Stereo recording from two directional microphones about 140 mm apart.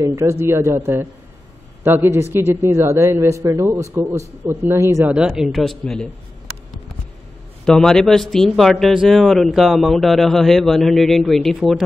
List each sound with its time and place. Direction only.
0.0 s a man's voice: 20° right (ahead or behind)
5.1 s speech: 5° right (ahead or behind)
7.6 s speech: 5° left (ahead or behind)